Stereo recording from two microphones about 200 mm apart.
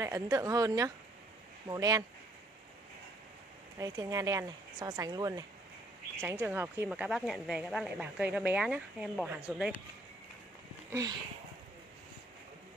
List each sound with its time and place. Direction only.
0.0 s speech: 15° right (ahead or behind)
3.7 s speech: 15° right (ahead or behind)
10.9 s speech: 15° right (ahead or behind)